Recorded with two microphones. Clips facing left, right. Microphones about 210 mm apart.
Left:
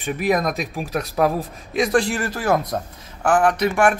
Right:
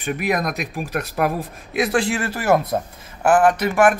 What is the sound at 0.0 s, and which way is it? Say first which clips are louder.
Speech: left 2 dB; centre (ahead or behind).